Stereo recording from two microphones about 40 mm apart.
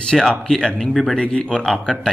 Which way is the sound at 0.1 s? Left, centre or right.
Centre.